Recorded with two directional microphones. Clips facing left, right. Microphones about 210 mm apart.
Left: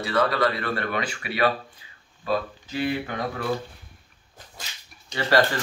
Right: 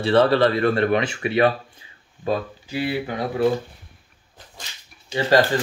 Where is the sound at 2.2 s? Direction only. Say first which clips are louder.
Right 2 dB; 15° right (ahead or behind).